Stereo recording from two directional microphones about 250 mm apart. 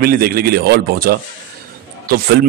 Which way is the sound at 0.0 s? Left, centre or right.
Right.